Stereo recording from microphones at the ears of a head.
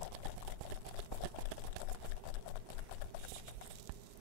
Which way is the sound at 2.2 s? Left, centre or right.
Left.